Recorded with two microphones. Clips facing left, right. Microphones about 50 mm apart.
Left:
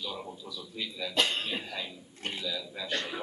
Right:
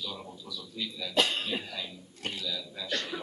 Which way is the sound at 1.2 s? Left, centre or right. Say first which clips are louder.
Right 1 dB; centre.